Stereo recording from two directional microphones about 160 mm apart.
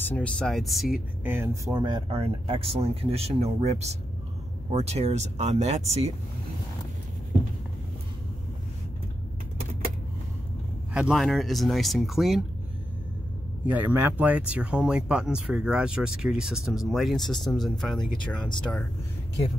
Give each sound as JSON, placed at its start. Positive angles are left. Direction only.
{"t": 0.1, "sound": "speech", "side_deg": 5}
{"t": 1.2, "sound": "speech", "side_deg": -15}
{"t": 2.0, "sound": "speech", "side_deg": -40}
{"t": 10.9, "sound": "speech", "side_deg": -5}
{"t": 13.7, "sound": "speech", "side_deg": -10}